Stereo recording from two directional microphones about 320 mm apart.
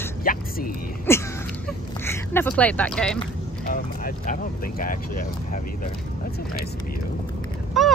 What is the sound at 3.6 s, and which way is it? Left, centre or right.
Speech, left.